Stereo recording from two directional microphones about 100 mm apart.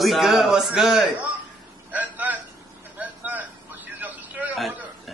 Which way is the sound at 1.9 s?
15° right (ahead or behind).